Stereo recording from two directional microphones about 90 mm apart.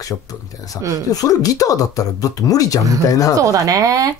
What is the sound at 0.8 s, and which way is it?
Speech, 35° left (ahead or behind).